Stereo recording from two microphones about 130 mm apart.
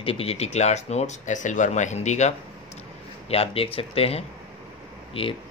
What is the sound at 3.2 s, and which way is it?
Speech, 50° left (ahead or behind).